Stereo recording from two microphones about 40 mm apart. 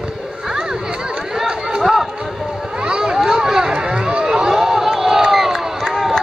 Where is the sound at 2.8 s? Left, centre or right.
Right.